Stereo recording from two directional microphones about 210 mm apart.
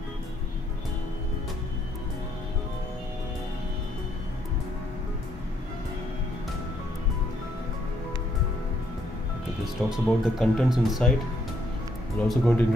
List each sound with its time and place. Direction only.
9.8 s speech: centre (ahead or behind)
12.2 s speech: 5° left (ahead or behind)